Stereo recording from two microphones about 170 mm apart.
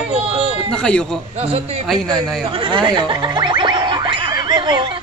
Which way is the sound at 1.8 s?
Centre (ahead or behind).